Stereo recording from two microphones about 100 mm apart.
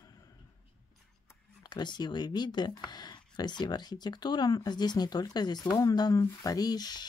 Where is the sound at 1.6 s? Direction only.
45° left (ahead or behind).